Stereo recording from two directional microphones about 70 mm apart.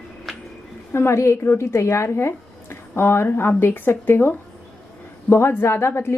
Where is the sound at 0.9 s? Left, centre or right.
Left.